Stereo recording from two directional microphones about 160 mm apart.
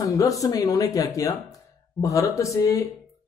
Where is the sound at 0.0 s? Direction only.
20° left (ahead or behind).